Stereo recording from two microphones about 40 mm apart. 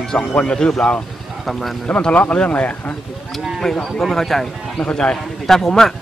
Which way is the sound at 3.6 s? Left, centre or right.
Centre.